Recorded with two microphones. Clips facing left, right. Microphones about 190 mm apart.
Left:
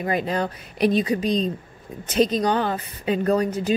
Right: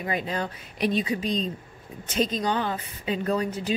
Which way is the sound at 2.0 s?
70° left (ahead or behind).